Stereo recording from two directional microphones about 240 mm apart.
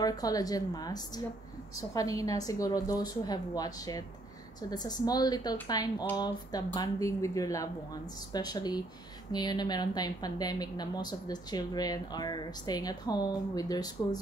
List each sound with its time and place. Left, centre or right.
0.0 s a woman's voice: centre